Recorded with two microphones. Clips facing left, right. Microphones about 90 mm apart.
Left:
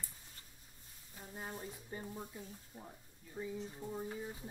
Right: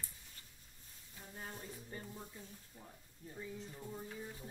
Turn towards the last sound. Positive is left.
turn(degrees=15)  # may be behind; listen again after turning